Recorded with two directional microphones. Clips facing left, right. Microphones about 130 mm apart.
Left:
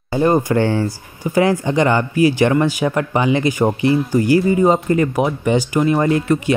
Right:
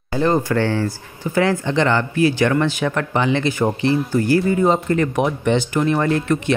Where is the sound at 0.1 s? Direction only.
15° left (ahead or behind).